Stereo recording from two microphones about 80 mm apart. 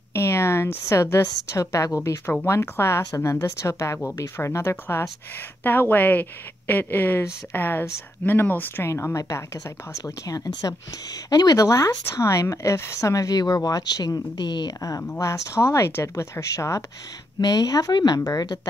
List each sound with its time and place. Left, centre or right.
0.1 s a woman's voice: left
2.0 s speech: left
11.5 s speech: left
14.8 s speech: left
17.4 s speech: left